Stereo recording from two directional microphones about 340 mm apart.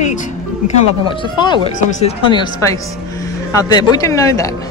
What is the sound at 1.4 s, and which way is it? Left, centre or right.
Speech, centre.